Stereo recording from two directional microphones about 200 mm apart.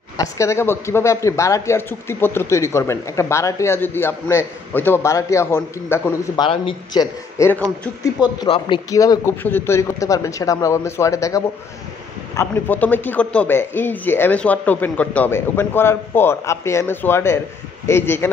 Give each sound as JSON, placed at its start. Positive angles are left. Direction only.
{"t": 0.2, "sound": "speech", "side_deg": 15}
{"t": 8.2, "sound": "speech", "side_deg": 20}